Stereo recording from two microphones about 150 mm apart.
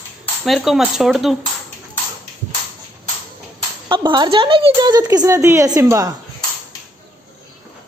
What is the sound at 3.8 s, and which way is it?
A woman's voice, 30° right (ahead or behind).